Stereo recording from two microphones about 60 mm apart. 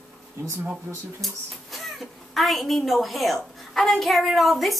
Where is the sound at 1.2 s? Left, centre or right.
Centre.